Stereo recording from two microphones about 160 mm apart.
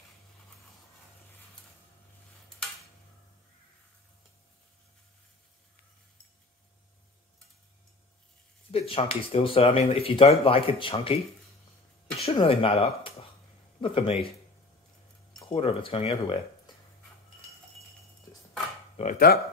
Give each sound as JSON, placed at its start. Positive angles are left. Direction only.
{"t": 8.7, "sound": "speech", "side_deg": 35}
{"t": 12.2, "sound": "speech", "side_deg": 35}
{"t": 15.4, "sound": "speech", "side_deg": 35}
{"t": 19.1, "sound": "speech", "side_deg": 75}